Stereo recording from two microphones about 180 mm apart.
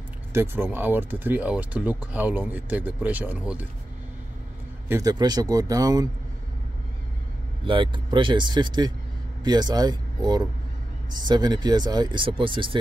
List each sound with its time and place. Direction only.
0.3 s speech: 15° right (ahead or behind)
4.8 s speech: 20° right (ahead or behind)
7.6 s speech: 25° right (ahead or behind)